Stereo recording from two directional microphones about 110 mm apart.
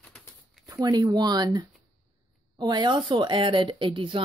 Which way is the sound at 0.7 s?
35° right (ahead or behind).